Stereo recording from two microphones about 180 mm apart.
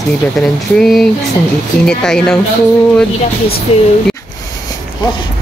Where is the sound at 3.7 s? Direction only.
35° left (ahead or behind).